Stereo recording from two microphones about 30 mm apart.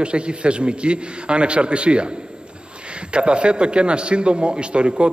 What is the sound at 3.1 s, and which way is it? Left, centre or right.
A man's voice, right.